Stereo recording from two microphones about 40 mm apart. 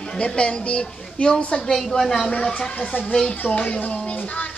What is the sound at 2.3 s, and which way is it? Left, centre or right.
A woman's voice, left.